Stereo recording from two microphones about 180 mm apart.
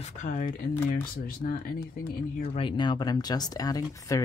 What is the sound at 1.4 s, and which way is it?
Speech, 60° left (ahead or behind).